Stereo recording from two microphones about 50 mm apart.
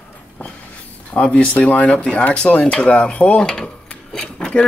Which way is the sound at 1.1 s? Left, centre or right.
Left.